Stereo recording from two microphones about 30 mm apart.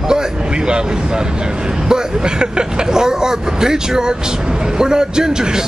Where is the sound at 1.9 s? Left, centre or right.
Right.